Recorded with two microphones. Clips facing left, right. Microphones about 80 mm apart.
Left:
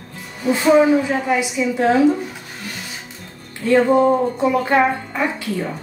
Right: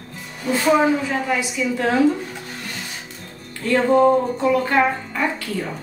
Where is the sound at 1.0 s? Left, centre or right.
Centre.